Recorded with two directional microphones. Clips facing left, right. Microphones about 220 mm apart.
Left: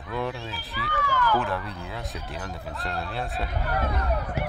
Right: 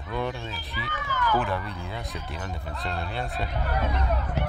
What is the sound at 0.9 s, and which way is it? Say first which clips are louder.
Speech: left 3 dB; 20° right (ahead or behind).